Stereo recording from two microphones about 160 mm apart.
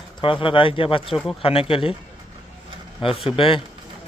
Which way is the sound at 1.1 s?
Centre (ahead or behind).